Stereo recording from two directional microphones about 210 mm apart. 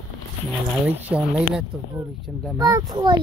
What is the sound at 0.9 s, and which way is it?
Speech, 5° right (ahead or behind).